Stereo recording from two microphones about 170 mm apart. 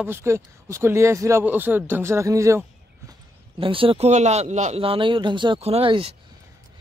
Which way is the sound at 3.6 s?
30° right (ahead or behind).